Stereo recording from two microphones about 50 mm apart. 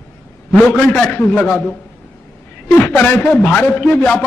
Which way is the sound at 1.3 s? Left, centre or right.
Left.